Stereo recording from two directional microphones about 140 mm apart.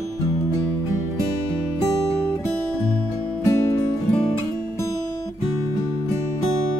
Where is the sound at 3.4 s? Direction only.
20° left (ahead or behind).